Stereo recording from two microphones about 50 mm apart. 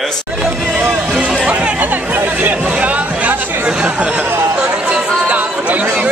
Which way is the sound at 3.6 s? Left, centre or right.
Right.